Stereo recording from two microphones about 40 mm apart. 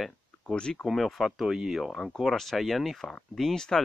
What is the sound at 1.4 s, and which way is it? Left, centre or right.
Speech, centre.